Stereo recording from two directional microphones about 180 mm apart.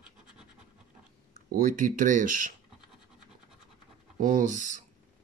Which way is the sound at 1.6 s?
50° right (ahead or behind).